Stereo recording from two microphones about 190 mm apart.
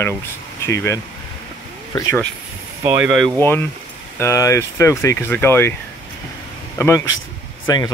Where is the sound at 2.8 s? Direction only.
10° right (ahead or behind).